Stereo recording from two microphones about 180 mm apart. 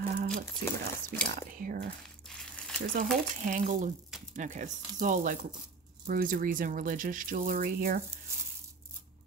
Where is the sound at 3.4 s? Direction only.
45° right (ahead or behind).